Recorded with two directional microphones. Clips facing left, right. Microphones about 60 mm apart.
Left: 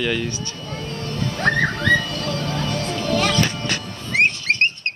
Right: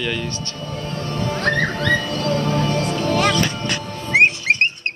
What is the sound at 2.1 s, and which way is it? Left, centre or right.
Music, right.